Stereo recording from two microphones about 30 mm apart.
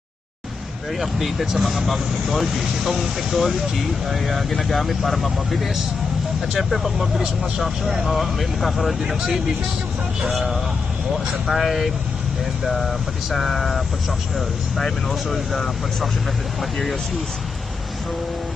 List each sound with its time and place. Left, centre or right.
1.1 s speech: centre
1.6 s speech: centre
7.0 s speech: centre
8.1 s speech: centre
11.4 s speech: centre